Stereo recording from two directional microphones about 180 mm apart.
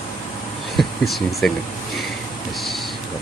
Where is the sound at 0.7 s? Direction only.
Centre (ahead or behind).